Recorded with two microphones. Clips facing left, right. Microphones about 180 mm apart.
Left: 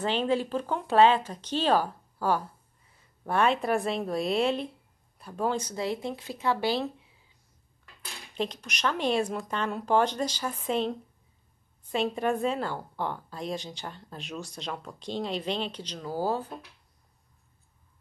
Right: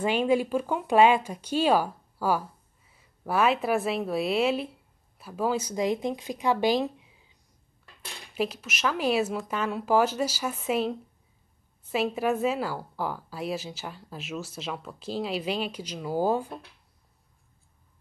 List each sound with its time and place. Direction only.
0.0 s a woman's voice: 10° right (ahead or behind)
8.4 s a woman's voice: 5° right (ahead or behind)